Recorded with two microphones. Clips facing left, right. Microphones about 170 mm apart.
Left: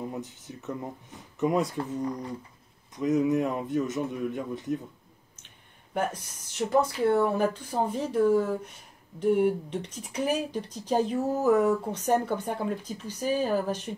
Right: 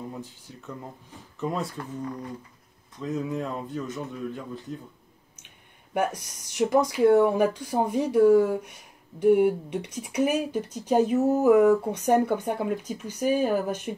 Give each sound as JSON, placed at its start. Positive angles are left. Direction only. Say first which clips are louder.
{"t": 0.1, "sound": "a man's voice", "louder": "left 2 dB", "side_deg": 20}
{"t": 5.9, "sound": "speech", "louder": "right 3 dB", "side_deg": -15}